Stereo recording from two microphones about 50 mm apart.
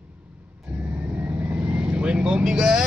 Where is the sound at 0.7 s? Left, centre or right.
Right.